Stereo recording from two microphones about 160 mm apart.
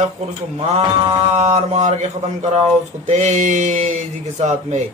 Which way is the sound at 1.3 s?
45° right (ahead or behind).